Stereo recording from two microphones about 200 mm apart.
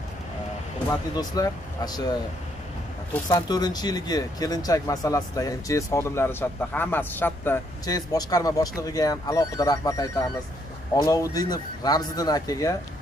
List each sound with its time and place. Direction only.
0.8 s a man's voice: 15° left (ahead or behind)